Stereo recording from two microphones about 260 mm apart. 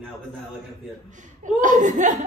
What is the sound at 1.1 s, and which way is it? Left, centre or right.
Speech, right.